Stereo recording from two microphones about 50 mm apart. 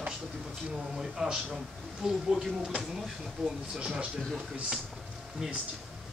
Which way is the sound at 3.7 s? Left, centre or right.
Centre.